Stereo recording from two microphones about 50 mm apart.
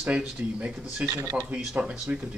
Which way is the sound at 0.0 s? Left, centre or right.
Right.